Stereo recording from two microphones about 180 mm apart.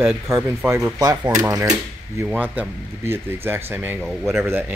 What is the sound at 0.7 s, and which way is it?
Speech, 15° right (ahead or behind).